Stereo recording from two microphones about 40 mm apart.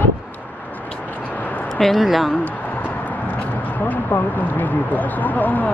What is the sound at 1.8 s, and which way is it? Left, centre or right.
Speech, centre.